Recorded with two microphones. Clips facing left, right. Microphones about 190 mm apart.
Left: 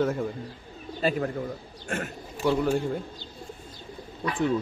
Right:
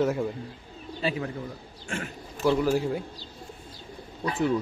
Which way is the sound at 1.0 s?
45° left (ahead or behind).